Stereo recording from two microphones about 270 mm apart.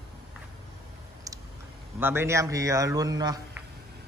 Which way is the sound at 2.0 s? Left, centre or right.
Centre.